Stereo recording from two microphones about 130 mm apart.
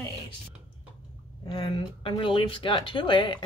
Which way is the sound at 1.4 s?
35° left (ahead or behind).